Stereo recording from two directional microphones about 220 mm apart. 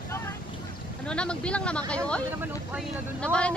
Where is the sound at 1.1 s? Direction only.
5° left (ahead or behind).